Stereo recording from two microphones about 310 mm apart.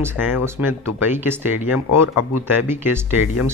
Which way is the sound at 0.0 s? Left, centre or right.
Centre.